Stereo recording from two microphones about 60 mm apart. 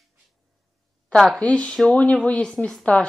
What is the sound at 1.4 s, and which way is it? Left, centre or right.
Speech, centre.